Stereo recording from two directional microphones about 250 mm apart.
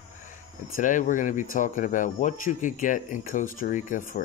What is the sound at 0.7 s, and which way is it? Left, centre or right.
Speech, left.